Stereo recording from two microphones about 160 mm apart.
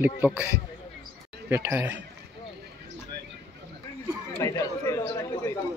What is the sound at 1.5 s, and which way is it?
Speech, 15° right (ahead or behind).